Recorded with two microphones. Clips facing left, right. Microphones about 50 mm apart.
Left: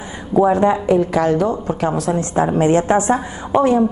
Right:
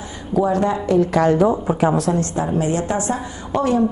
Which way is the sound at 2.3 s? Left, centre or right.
Left.